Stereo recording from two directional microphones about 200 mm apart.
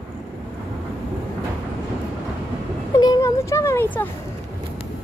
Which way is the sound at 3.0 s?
15° left (ahead or behind).